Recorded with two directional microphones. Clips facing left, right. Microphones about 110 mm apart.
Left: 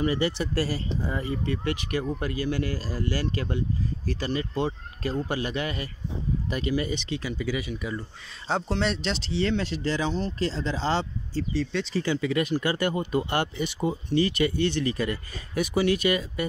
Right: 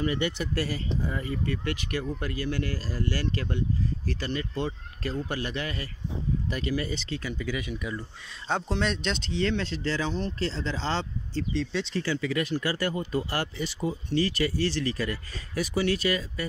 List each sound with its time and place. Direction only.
0.0 s speech: 30° left (ahead or behind); by 12.0 s centre (ahead or behind)
12.0 s speech: 20° left (ahead or behind)